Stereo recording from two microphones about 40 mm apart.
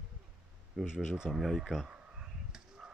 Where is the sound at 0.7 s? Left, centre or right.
Centre.